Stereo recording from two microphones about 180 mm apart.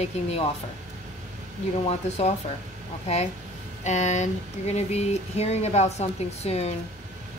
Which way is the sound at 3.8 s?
40° left (ahead or behind).